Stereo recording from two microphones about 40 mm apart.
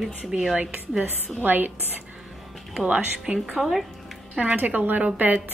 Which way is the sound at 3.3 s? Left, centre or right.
Centre.